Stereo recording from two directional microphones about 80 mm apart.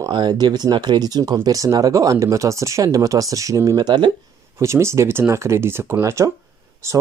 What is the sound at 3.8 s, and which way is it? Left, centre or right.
Speech, right.